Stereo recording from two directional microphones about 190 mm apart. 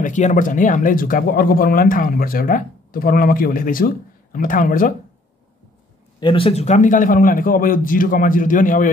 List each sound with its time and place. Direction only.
0.0 s speech: 40° left (ahead or behind)
6.1 s speech: 25° left (ahead or behind); by 8.8 s 45° left (ahead or behind)